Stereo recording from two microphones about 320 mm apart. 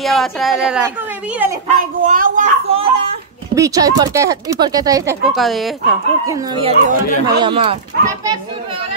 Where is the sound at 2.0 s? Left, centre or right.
Right.